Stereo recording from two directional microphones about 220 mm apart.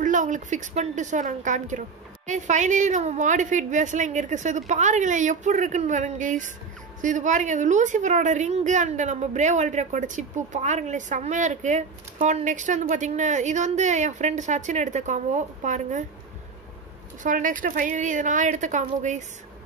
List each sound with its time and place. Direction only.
0.0 s a woman's voice: 35° right (ahead or behind)
17.2 s a woman's voice: 35° right (ahead or behind)